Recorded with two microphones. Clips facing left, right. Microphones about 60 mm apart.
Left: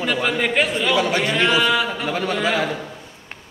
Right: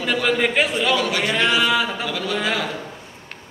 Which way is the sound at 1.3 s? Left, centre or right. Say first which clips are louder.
Right 1 dB; centre.